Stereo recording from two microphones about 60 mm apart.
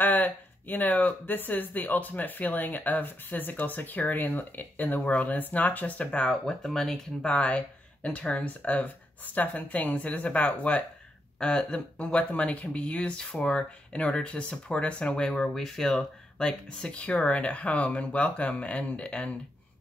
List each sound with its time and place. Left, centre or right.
0.0 s speech: left
11.3 s speech: centre
16.9 s speech: left